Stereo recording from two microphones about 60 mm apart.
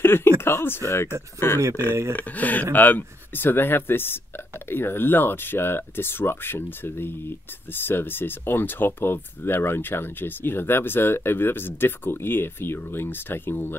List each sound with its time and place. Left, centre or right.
0.0 s a sound: left
0.4 s speech: left
2.1 s speech: left